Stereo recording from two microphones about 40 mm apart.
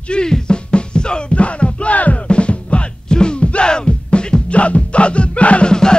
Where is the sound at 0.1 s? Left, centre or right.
Left.